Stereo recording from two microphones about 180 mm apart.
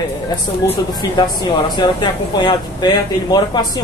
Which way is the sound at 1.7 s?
25° left (ahead or behind).